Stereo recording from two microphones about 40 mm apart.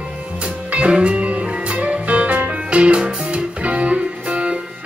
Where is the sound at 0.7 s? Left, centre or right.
Right.